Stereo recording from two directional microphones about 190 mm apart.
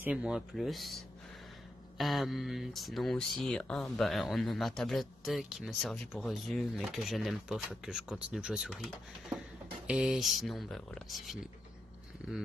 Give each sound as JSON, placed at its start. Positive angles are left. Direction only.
{"t": 0.0, "sound": "speech", "side_deg": -5}